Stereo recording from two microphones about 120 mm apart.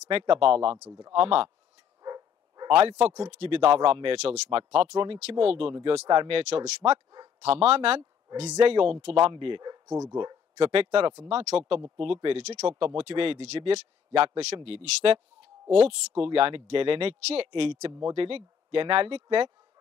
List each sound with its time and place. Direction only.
0.1 s speech: 45° right (ahead or behind)
0.8 s speech: 30° right (ahead or behind)
1.2 s speech: 50° right (ahead or behind)
2.0 s dog: 35° right (ahead or behind)
2.7 s speech: 55° right (ahead or behind)
9.0 s speech: 55° right (ahead or behind); by 10.0 s 30° right (ahead or behind)
10.1 s speech: 45° right (ahead or behind)
12.4 s speech: 60° right (ahead or behind)
16.2 s speech: 50° right (ahead or behind)